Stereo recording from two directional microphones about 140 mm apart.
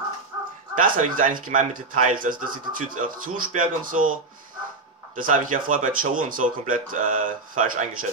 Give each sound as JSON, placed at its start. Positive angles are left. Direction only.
{"t": 0.7, "sound": "speech", "side_deg": -70}